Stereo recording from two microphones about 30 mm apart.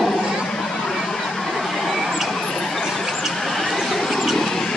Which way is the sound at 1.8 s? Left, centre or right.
Centre.